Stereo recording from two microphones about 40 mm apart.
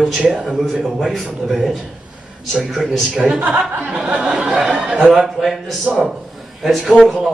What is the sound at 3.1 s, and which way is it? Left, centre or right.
Speech, centre.